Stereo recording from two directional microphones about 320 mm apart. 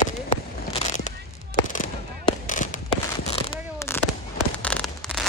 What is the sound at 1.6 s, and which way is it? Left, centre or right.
Firecracker, left.